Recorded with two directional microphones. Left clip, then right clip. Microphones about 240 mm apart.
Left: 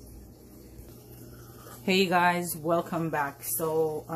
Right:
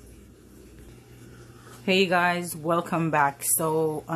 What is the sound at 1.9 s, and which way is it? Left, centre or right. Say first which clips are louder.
Speech: right 2 dB; centre.